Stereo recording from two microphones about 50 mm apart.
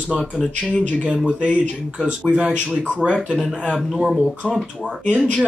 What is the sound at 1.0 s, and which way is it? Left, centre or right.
Speech, right.